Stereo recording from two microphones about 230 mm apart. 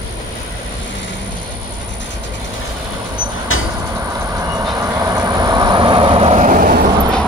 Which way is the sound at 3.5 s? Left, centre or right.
Left.